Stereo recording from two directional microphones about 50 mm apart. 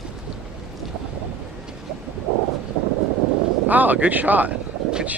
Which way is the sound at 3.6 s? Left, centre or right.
Right.